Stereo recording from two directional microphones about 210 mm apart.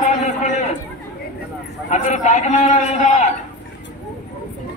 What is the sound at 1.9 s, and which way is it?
A man's voice, 35° left (ahead or behind).